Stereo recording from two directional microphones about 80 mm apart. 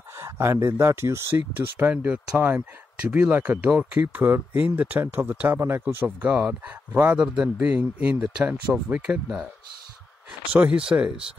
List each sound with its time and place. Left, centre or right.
0.2 s speech: right
3.7 s speech: centre
4.1 s speech: right
6.0 s speech: centre
7.2 s speech: centre
10.5 s speech: centre